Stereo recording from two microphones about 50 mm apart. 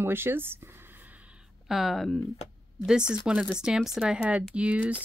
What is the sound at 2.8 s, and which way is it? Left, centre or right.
Speech, centre.